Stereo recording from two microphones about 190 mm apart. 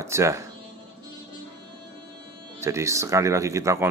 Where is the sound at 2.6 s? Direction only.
15° right (ahead or behind).